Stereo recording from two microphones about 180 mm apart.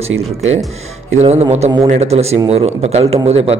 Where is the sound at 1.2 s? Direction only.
35° right (ahead or behind).